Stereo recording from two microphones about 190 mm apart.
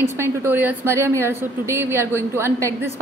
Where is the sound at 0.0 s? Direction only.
15° right (ahead or behind).